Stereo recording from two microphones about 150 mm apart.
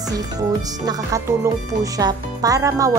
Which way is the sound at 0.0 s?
25° right (ahead or behind).